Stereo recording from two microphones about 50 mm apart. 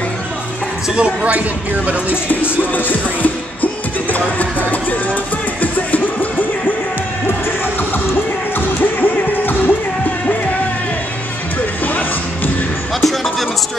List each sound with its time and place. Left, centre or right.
0.8 s speech: centre
2.2 s music: left
8.5 s music: left
11.8 s music: left
13.0 s music: centre